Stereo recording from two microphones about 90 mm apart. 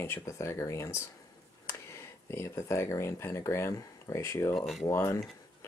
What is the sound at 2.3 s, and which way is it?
Speech, 30° left (ahead or behind).